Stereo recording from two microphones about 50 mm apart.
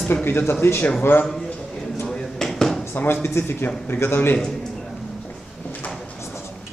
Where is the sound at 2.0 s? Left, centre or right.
Centre.